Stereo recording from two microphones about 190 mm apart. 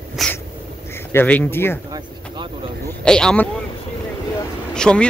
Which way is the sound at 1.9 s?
20° right (ahead or behind).